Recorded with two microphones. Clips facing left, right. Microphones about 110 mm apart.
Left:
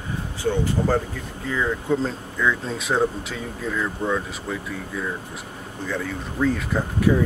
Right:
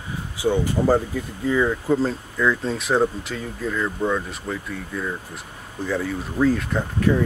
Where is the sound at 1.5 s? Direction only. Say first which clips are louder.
Right 2 dB; 5° right (ahead or behind).